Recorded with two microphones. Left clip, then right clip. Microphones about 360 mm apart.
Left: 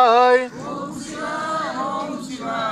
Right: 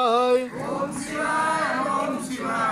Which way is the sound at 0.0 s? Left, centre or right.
Left.